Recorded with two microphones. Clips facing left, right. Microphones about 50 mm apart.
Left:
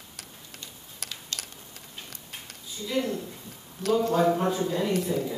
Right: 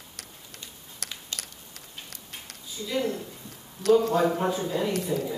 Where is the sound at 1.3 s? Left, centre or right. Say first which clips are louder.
Left 1 dB; centre.